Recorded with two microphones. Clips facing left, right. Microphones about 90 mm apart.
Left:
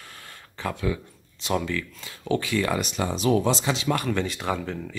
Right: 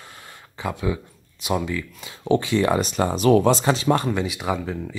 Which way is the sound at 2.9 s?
45° right (ahead or behind).